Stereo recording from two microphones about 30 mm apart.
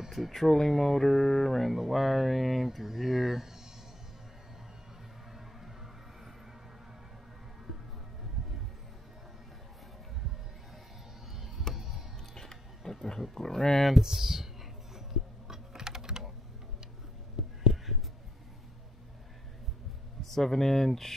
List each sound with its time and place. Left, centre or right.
0.1 s speech: centre
11.7 s music: centre
12.4 s biting: centre
13.4 s speech: centre
14.0 s speech: centre
15.0 s typing: centre
17.4 s a sound: centre
20.2 s speech: centre